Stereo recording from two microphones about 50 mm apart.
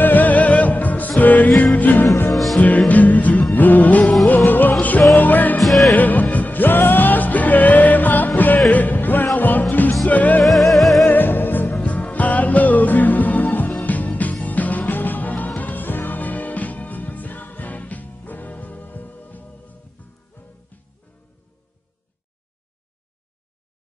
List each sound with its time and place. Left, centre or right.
0.0 s music: left
2.3 s music: centre
2.9 s music: left
5.6 s music: centre
5.9 s music: left
10.4 s music: centre
11.1 s music: left